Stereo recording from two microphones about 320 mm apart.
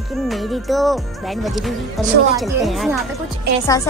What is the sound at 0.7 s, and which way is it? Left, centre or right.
Speech, centre.